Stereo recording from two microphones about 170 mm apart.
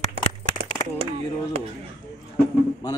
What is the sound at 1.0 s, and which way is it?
Speech, 35° right (ahead or behind).